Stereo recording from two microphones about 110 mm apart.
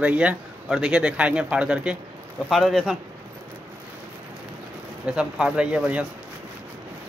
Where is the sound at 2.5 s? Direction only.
Centre (ahead or behind).